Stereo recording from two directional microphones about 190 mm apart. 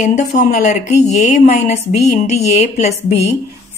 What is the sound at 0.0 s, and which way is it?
A woman's voice, 40° left (ahead or behind).